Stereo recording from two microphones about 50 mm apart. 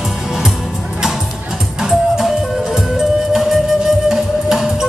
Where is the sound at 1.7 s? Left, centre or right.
Centre.